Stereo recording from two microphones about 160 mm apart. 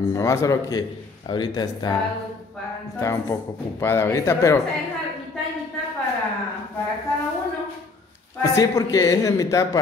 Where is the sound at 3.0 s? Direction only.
15° left (ahead or behind).